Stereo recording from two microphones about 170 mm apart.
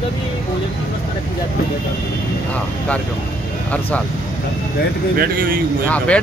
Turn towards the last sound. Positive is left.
turn(degrees=5)  # may be behind; listen again after turning